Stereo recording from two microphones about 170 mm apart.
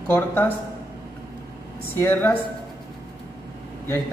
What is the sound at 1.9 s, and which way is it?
Speech, 15° left (ahead or behind).